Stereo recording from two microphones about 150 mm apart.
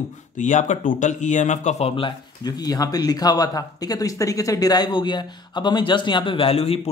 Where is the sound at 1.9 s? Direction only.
30° left (ahead or behind).